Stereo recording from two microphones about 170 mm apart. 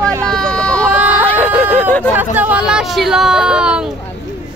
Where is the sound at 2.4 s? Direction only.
10° right (ahead or behind).